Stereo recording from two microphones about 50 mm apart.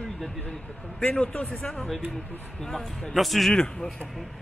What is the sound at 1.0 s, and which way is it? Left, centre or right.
Speech, centre.